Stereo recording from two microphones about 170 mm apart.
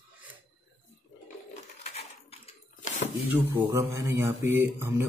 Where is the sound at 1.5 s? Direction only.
40° left (ahead or behind).